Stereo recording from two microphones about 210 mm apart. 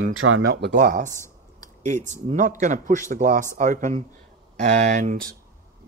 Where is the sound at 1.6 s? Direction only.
35° right (ahead or behind).